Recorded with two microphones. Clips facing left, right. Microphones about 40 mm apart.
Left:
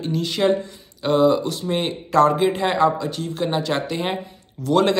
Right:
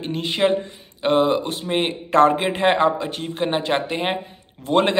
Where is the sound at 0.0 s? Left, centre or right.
Right.